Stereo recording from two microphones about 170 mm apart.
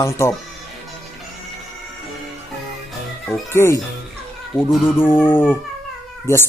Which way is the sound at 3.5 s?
15° left (ahead or behind).